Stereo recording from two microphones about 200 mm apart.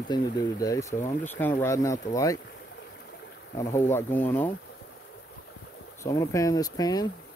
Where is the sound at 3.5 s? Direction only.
10° left (ahead or behind).